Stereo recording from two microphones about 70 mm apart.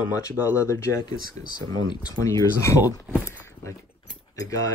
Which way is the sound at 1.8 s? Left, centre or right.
Left.